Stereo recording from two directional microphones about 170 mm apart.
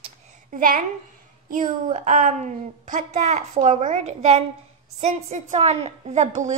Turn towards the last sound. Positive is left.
turn(degrees=-45)  # may be behind; listen again after turning